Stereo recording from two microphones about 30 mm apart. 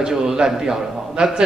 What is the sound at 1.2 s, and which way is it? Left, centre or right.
Speech, right.